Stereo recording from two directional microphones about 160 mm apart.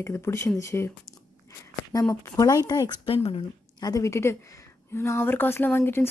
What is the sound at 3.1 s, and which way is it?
Speech, 35° left (ahead or behind).